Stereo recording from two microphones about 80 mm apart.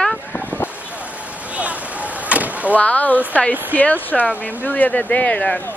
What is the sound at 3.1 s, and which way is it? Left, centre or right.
Speech, centre.